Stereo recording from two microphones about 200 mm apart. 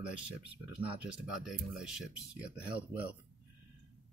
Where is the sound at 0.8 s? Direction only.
5° right (ahead or behind).